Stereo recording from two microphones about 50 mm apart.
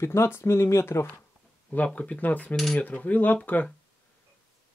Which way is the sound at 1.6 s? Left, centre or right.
Left.